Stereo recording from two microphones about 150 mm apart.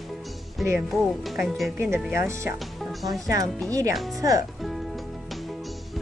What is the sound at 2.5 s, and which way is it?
Music, centre (ahead or behind).